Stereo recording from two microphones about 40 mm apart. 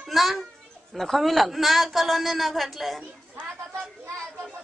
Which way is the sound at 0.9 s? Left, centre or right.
Centre.